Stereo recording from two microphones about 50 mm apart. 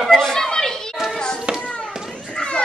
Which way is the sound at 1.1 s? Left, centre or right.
Centre.